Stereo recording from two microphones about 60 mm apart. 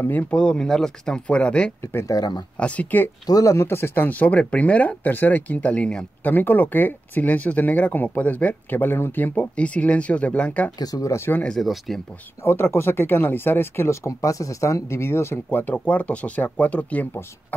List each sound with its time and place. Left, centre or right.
0.2 s speech: centre
2.0 s speech: left
2.5 s speech: left
3.3 s speech: left
3.5 s speech: left; by 6.0 s centre
6.2 s speech: left
10.8 s speech: left
11.6 s speech: centre
12.4 s speech: left
14.0 s speech: left